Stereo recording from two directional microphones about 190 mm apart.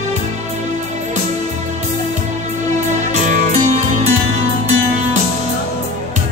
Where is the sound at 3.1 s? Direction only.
40° right (ahead or behind).